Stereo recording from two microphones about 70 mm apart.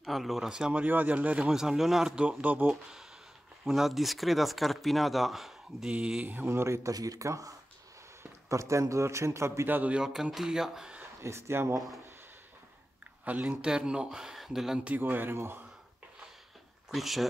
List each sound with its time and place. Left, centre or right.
0.0 s speech: centre
0.8 s speech: right; by 2.2 s centre
2.4 s speech: right
2.7 s speech: centre
5.9 s speech: centre
6.2 s speech: right
6.9 s a man's voice: right
9.7 s speech: right
9.9 s speech: centre
11.0 s speech: right
13.2 s speech: right
13.7 s speech: centre
15.0 s speech: right
16.9 s speech: centre